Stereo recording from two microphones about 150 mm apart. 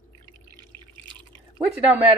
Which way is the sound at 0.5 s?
30° right (ahead or behind).